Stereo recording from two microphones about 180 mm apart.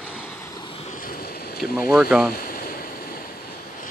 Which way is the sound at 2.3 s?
55° left (ahead or behind).